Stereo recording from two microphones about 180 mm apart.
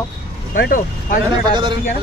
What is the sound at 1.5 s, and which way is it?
Speech, 25° right (ahead or behind).